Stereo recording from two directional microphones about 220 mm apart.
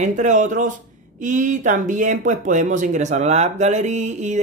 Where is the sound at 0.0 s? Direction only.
35° right (ahead or behind).